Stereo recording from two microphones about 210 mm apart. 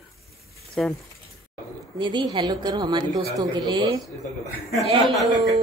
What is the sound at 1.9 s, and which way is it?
A woman's voice, 20° right (ahead or behind).